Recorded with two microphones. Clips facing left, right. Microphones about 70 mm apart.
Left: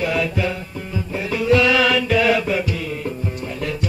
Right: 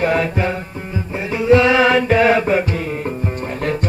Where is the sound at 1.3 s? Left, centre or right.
Right.